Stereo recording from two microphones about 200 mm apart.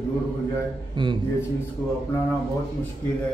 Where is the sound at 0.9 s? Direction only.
25° right (ahead or behind).